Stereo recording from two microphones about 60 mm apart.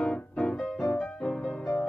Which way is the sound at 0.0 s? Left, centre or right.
Centre.